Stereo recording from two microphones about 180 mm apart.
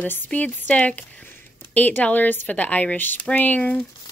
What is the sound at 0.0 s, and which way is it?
Speech, 10° left (ahead or behind).